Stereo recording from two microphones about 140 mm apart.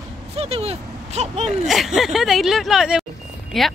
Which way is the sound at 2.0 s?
Centre (ahead or behind).